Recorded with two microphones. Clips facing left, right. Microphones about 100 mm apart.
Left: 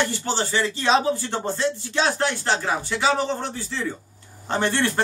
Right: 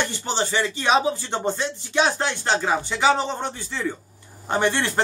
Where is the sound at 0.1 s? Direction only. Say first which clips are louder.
Even; 20° right (ahead or behind).